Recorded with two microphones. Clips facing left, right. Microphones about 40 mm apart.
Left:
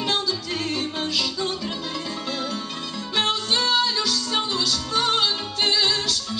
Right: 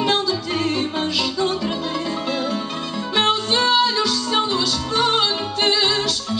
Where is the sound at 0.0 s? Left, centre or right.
Centre.